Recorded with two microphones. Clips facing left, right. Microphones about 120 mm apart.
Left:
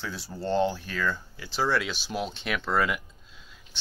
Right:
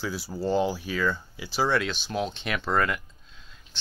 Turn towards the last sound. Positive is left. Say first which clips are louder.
# right 1 dB
turn(degrees=10)  # may be behind; listen again after turning